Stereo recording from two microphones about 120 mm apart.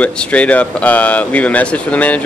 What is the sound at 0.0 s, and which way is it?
Speech, 10° left (ahead or behind).